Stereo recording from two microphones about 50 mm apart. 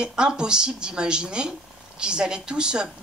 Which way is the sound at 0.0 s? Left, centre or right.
Centre.